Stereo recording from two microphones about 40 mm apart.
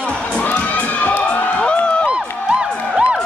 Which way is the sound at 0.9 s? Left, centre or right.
Left.